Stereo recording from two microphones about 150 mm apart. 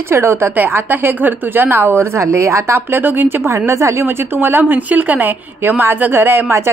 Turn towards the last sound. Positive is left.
turn(degrees=-15)  # may be behind; listen again after turning